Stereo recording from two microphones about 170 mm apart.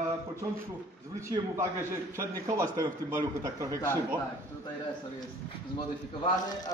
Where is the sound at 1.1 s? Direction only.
20° right (ahead or behind).